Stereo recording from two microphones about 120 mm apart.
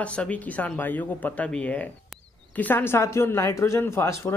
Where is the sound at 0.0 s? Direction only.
10° left (ahead or behind).